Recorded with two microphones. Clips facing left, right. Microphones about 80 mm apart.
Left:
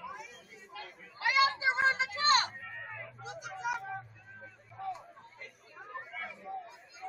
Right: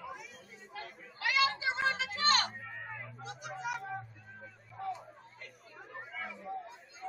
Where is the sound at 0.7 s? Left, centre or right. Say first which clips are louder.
Right 1 dB; right.